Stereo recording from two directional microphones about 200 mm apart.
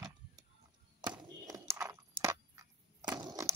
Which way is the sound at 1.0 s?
20° right (ahead or behind).